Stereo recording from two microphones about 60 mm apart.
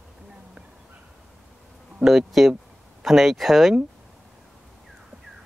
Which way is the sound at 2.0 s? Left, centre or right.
Centre.